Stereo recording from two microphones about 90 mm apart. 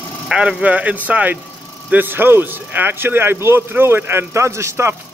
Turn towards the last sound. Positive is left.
turn(degrees=-30)  # may be behind; listen again after turning